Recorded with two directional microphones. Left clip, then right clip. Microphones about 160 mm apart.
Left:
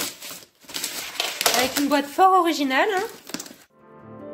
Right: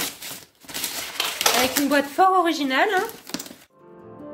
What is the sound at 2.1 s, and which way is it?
Speech, 35° left (ahead or behind).